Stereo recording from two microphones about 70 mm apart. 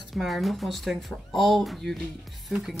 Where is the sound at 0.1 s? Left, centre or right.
Centre.